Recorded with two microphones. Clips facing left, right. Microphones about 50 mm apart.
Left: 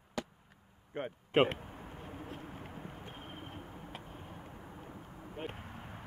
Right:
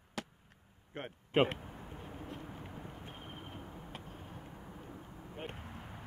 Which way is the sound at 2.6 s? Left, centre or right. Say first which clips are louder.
Left 1 dB; centre.